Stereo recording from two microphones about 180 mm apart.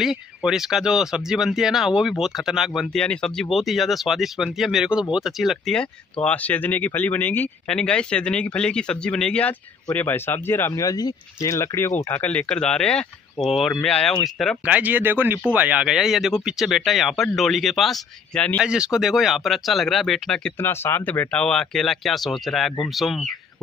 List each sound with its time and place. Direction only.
0.0 s speech: centre (ahead or behind)
18.6 s speech: 5° right (ahead or behind)